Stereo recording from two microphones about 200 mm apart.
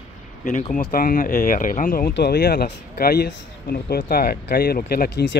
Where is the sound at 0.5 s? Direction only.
45° left (ahead or behind).